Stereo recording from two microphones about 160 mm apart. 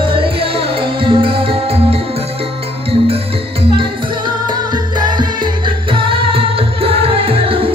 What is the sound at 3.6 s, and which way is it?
Music, 30° right (ahead or behind).